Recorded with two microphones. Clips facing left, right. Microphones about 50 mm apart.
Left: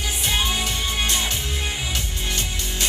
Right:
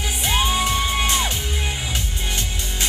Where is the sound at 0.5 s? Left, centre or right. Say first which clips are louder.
Right 4 dB; right.